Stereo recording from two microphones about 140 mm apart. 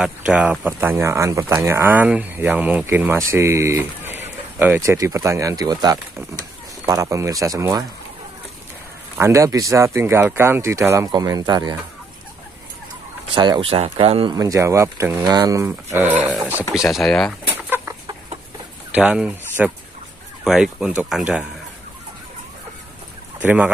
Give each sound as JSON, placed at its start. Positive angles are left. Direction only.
{"t": 0.0, "sound": "speech", "side_deg": -5}
{"t": 9.2, "sound": "speech", "side_deg": -20}
{"t": 13.3, "sound": "speech", "side_deg": -35}
{"t": 14.3, "sound": "speech", "side_deg": -25}
{"t": 16.7, "sound": "speech", "side_deg": 0}
{"t": 17.5, "sound": "chicken", "side_deg": -15}
{"t": 18.9, "sound": "speech", "side_deg": -10}
{"t": 23.4, "sound": "speech", "side_deg": -10}